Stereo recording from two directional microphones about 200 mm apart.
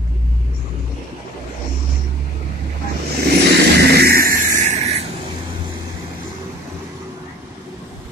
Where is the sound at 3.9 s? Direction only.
50° right (ahead or behind); by 5.0 s 35° right (ahead or behind).